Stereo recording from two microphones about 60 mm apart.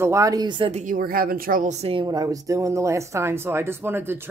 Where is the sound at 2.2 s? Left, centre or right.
Right.